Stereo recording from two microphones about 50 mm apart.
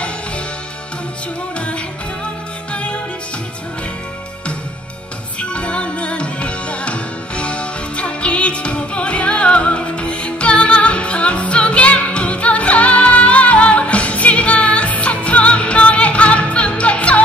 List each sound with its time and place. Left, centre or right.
2.7 s music: left
5.4 s music: left